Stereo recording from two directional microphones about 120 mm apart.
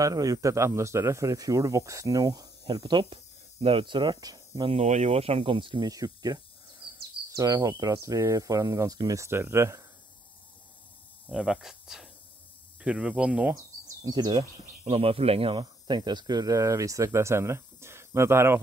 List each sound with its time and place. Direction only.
0.0 s speech: 30° right (ahead or behind)
4.6 s speech: 70° right (ahead or behind); by 5.9 s 45° right (ahead or behind)
5.9 s speech: 30° right (ahead or behind)
11.2 s speech: 5° right (ahead or behind)
13.6 s a sound: 35° right (ahead or behind)
14.9 s speech: 55° right (ahead or behind); by 18.6 s 20° right (ahead or behind)